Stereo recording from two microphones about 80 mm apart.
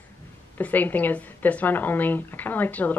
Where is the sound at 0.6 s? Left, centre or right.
Left.